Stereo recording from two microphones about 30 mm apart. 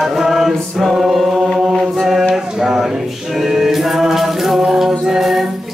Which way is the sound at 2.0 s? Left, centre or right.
Centre.